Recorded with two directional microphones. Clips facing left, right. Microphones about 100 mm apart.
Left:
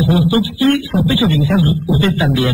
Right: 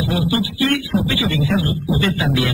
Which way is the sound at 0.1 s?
30° left (ahead or behind).